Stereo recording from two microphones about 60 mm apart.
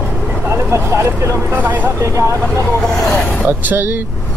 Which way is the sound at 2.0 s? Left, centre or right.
Right.